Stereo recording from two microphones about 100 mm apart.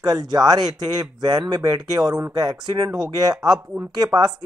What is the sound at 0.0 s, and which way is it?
Speech, 40° right (ahead or behind).